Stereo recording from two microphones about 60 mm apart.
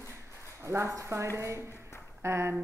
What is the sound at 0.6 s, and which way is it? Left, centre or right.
Speech, right.